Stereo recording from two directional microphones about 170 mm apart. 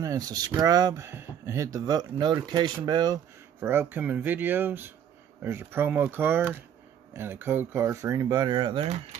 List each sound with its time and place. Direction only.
0.0 s speech: 20° right (ahead or behind)
3.6 s speech: 10° right (ahead or behind); by 8.9 s 30° right (ahead or behind)